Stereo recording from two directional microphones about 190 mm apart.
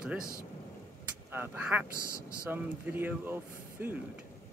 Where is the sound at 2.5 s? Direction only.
10° right (ahead or behind).